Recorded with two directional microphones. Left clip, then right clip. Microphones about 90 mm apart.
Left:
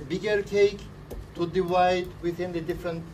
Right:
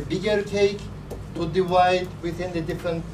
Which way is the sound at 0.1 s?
25° right (ahead or behind).